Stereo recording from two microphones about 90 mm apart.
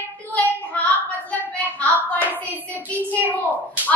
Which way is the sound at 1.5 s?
15° left (ahead or behind).